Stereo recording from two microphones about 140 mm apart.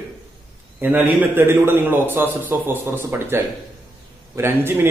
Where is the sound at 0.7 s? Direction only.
15° right (ahead or behind).